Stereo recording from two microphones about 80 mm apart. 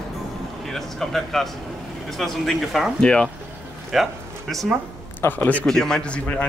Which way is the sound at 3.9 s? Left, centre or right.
Centre.